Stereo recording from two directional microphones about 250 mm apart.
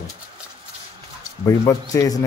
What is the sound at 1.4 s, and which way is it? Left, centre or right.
Speech, centre.